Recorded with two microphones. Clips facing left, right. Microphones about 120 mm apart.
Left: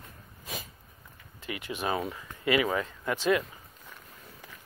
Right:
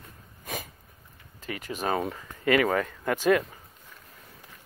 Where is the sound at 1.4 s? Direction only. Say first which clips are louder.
Right 2 dB; 40° right (ahead or behind).